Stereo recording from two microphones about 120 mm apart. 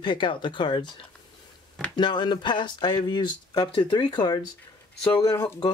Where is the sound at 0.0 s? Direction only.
40° left (ahead or behind).